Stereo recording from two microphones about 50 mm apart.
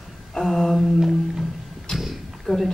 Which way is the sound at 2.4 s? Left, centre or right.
Centre.